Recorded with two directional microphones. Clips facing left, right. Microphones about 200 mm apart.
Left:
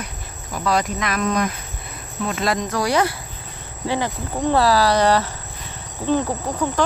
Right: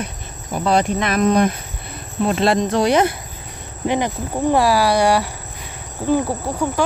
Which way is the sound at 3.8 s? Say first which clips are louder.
Right 3 dB; 20° right (ahead or behind).